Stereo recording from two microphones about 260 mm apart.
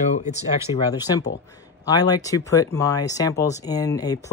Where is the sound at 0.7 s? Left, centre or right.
Left.